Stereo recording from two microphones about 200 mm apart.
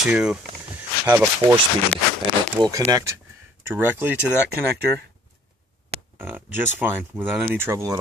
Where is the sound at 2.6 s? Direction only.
15° right (ahead or behind).